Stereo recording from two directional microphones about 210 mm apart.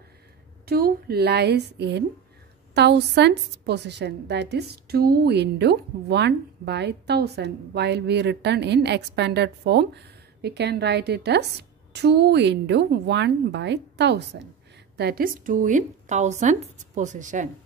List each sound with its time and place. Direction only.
0.7 s a woman's voice: 45° right (ahead or behind)